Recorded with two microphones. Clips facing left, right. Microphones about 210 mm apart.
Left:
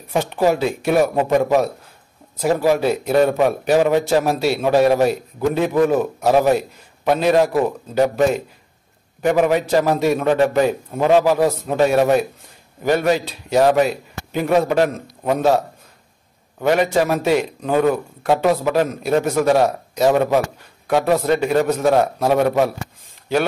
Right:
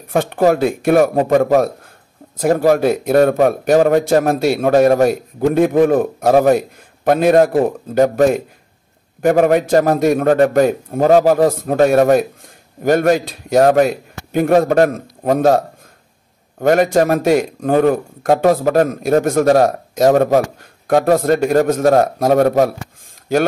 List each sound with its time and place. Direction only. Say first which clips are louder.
0.1 s a man's voice: right 4 dB; 50° right (ahead or behind)